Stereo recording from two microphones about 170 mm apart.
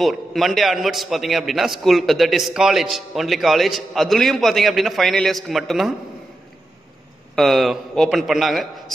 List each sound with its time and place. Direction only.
0.0 s a man's voice: centre (ahead or behind)
7.3 s a man's voice: centre (ahead or behind)